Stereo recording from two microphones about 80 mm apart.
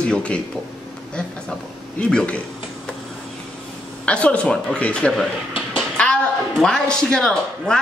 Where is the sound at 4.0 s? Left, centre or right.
Centre.